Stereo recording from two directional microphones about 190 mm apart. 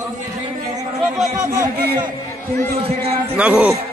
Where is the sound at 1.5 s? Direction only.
15° right (ahead or behind).